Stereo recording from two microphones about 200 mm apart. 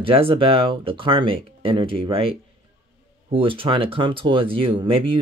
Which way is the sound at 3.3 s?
25° right (ahead or behind).